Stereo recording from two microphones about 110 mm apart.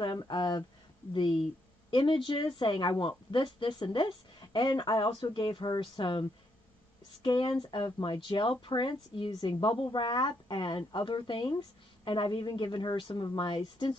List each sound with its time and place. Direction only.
0.0 s a woman's voice: 40° left (ahead or behind)
7.2 s a woman's voice: 45° left (ahead or behind)